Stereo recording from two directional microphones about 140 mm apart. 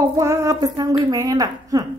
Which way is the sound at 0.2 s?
20° right (ahead or behind).